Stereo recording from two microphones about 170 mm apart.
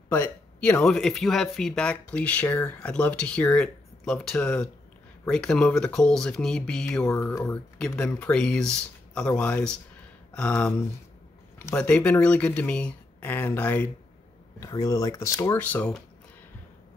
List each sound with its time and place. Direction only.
0.1 s speech: 10° left (ahead or behind)
7.2 s speech: 15° left (ahead or behind)